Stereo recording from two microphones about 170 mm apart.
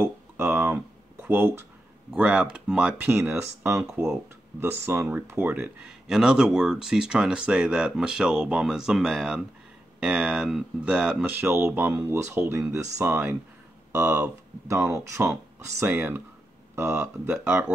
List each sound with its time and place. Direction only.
0.0 s a sound: 10° right (ahead or behind)
2.1 s speech: 5° right (ahead or behind)
3.8 s speech: 5° right (ahead or behind)